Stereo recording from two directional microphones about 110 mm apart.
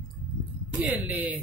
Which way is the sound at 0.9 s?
15° right (ahead or behind).